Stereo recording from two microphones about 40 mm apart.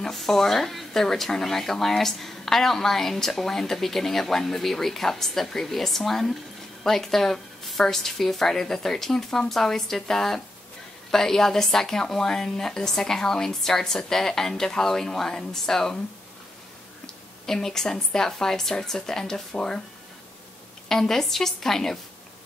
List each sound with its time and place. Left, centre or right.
0.0 s speech: centre
17.0 s speech: centre
20.9 s speech: centre